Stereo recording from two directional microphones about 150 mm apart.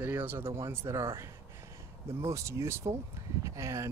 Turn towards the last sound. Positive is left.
turn(degrees=-20)  # may be behind; listen again after turning